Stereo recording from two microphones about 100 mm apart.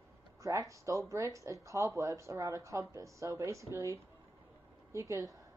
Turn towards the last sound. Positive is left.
turn(degrees=-30)  # may be behind; listen again after turning